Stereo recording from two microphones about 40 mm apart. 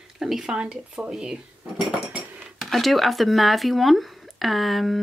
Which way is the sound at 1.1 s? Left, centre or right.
Centre.